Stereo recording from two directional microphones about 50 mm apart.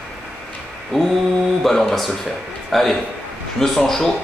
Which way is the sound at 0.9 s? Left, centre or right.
Centre.